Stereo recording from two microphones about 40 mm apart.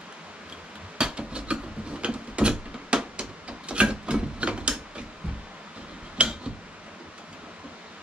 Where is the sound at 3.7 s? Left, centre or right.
Right.